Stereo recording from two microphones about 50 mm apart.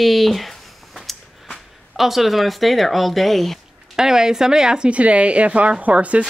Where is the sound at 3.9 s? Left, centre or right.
Centre.